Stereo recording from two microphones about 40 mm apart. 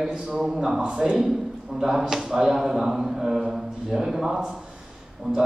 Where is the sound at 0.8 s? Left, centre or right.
Right.